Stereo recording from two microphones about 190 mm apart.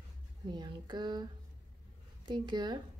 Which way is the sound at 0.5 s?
25° right (ahead or behind).